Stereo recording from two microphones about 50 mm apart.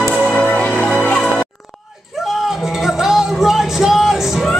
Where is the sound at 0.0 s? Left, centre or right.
Centre.